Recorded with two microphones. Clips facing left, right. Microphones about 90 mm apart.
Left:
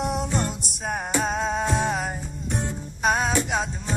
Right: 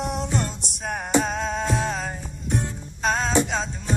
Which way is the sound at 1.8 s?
15° left (ahead or behind).